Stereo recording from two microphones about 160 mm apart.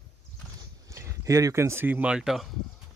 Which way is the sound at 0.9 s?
20° right (ahead or behind).